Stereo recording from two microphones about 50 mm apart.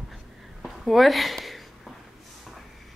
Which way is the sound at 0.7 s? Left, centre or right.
Centre.